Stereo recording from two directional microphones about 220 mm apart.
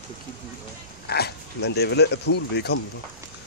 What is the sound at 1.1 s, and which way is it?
Speech, 45° left (ahead or behind).